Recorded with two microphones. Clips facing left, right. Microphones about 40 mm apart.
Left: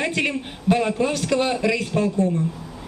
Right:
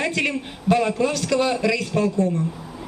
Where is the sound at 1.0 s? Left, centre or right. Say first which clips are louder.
Right 1 dB; left.